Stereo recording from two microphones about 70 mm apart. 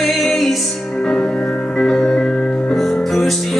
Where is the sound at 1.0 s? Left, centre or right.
Centre.